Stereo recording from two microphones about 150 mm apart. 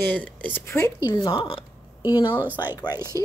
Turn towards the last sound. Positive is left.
turn(degrees=-20)  # may be behind; listen again after turning